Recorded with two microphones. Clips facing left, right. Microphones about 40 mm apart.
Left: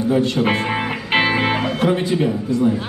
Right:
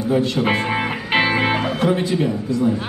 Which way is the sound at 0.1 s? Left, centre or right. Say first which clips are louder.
Even; centre.